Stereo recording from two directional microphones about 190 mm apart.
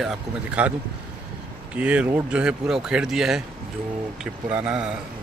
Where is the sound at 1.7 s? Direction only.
5° right (ahead or behind).